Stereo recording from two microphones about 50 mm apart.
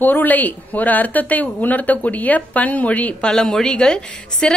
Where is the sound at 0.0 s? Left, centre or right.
Left.